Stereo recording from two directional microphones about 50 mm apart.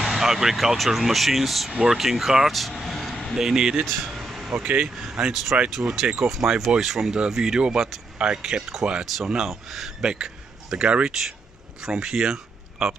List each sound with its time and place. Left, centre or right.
0.0 s speech: centre
3.3 s speech: centre
3.8 s air conditioning: centre
4.6 s speech: right
4.8 s speech: centre
10.0 s speech: centre